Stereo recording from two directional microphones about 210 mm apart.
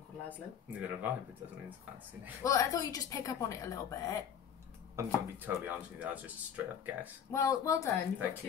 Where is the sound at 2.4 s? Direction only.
15° left (ahead or behind).